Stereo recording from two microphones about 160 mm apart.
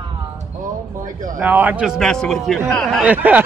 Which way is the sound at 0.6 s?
55° right (ahead or behind).